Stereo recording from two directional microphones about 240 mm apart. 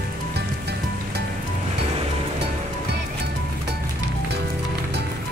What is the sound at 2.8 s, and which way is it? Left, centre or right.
Music, right.